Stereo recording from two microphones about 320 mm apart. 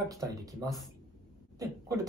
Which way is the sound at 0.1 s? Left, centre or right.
Centre.